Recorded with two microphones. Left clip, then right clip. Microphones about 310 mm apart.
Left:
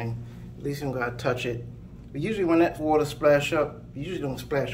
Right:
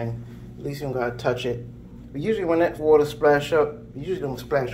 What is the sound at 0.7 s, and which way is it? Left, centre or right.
Speech, centre.